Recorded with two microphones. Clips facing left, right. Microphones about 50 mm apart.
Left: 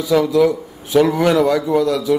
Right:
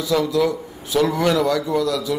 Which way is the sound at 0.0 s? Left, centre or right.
Centre.